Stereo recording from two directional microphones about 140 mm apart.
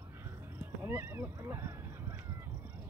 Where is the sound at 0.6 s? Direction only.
15° right (ahead or behind).